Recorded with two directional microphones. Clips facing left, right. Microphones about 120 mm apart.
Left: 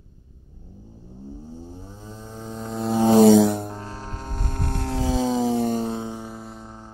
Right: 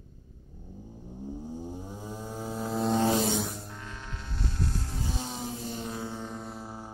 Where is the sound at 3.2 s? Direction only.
85° left.